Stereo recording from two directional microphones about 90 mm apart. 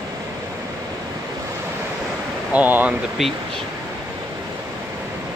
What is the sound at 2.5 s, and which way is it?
Speech, 20° right (ahead or behind).